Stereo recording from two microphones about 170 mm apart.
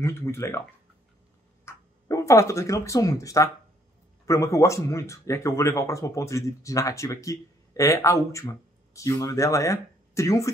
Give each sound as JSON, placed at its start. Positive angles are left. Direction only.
{"t": 0.0, "sound": "speech", "side_deg": 15}
{"t": 1.7, "sound": "speech", "side_deg": 20}